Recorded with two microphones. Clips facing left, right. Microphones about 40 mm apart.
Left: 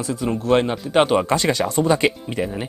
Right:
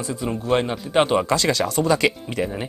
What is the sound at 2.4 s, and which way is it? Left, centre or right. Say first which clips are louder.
Speech: even; centre.